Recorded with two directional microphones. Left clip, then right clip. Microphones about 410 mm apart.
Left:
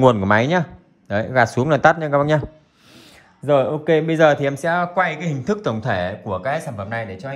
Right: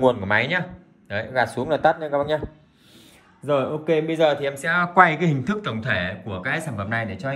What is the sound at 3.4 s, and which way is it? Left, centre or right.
A man's voice, left.